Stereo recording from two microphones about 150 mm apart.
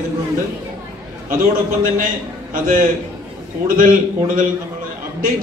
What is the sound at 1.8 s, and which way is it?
A man's voice, 65° right (ahead or behind).